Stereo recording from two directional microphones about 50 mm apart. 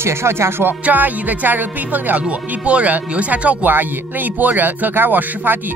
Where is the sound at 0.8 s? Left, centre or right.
Right.